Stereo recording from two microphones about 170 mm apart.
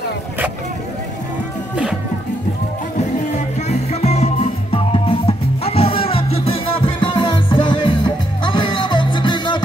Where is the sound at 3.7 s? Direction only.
40° left (ahead or behind).